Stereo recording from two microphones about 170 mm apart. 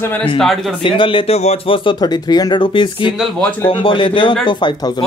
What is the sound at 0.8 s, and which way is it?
Speech, 30° left (ahead or behind).